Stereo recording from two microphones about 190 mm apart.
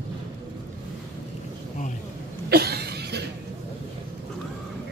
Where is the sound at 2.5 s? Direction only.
55° right (ahead or behind).